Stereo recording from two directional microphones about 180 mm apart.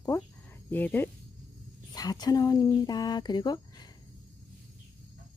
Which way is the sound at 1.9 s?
20° left (ahead or behind).